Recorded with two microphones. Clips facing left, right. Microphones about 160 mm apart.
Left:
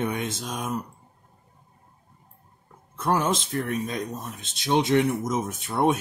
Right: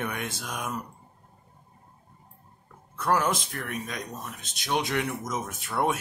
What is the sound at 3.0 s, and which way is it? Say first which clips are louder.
Speech: left 1 dB; 25° left (ahead or behind).